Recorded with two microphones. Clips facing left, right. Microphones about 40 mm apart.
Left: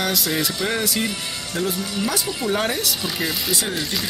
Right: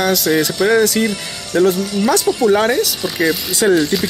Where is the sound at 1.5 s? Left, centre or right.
Right.